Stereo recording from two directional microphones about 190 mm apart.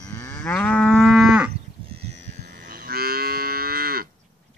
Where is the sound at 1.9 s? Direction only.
40° right (ahead or behind).